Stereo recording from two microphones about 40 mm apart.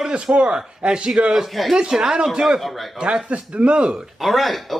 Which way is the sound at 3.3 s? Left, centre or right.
Right.